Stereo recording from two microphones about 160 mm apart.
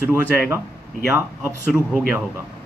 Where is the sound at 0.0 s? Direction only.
15° right (ahead or behind).